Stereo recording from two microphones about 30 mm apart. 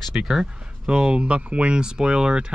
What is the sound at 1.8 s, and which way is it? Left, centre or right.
Speech, right.